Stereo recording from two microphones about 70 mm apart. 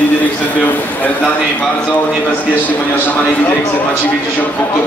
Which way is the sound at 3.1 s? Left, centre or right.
Left.